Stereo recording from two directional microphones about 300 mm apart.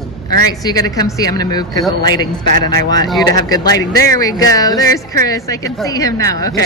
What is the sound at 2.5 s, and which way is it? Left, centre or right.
Speech, right.